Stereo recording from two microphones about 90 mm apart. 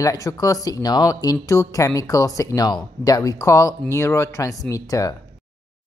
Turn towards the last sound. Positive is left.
turn(degrees=40)  # may be behind; listen again after turning